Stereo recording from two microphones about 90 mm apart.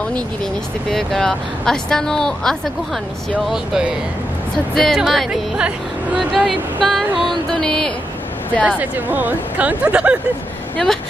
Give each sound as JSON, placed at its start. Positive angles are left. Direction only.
{"t": 0.8, "sound": "speech", "side_deg": 5}
{"t": 3.4, "sound": "speech", "side_deg": -5}
{"t": 8.6, "sound": "speech", "side_deg": -15}